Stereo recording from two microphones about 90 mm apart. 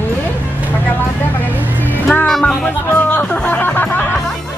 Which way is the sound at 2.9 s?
20° left (ahead or behind).